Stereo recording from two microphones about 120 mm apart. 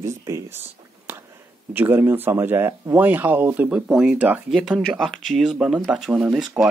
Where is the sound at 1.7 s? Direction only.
15° right (ahead or behind).